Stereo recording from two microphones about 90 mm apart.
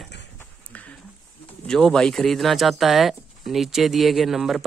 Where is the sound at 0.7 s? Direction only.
15° left (ahead or behind).